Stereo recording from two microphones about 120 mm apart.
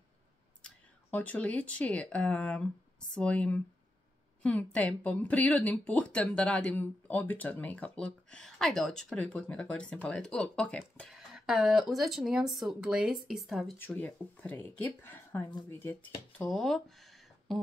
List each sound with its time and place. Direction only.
0.6 s speech: 10° left (ahead or behind)
11.1 s speech: 5° right (ahead or behind)
13.7 s speech: 15° left (ahead or behind)